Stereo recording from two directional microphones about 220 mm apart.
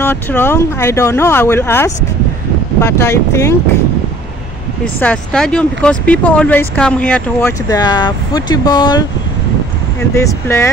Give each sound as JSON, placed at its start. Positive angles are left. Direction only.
{"t": 0.0, "sound": "speech", "side_deg": 10}
{"t": 5.0, "sound": "speech", "side_deg": 5}
{"t": 7.7, "sound": "speech", "side_deg": 20}
{"t": 10.1, "sound": "speech", "side_deg": 10}